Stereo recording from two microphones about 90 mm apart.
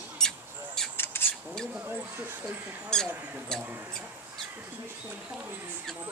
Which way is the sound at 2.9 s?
5° left (ahead or behind).